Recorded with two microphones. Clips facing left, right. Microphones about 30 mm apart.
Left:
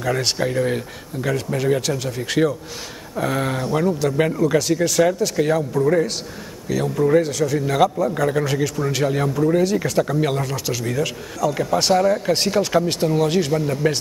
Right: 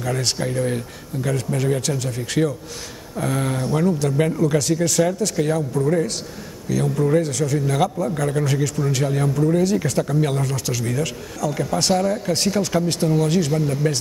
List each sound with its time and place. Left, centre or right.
0.0 s speech: centre